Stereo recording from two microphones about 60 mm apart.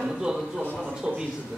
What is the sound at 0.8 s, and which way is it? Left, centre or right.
Speech, centre.